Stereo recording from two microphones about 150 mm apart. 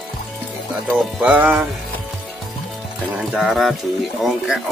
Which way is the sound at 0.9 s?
5° right (ahead or behind).